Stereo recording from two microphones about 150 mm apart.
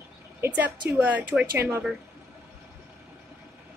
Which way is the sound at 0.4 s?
15° right (ahead or behind).